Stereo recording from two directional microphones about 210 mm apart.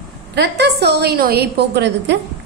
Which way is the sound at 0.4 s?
50° right (ahead or behind).